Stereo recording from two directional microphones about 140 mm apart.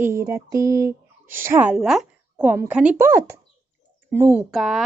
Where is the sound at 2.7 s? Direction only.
10° right (ahead or behind).